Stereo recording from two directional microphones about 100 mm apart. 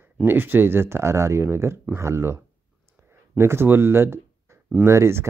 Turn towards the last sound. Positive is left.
turn(degrees=-25)  # may be behind; listen again after turning